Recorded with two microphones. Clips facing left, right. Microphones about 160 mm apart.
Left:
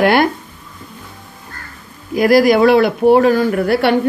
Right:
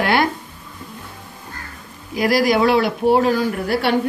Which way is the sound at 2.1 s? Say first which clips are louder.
Left 6 dB; 50° left (ahead or behind).